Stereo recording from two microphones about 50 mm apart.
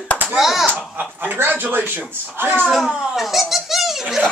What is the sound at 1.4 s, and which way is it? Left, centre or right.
Speech, right.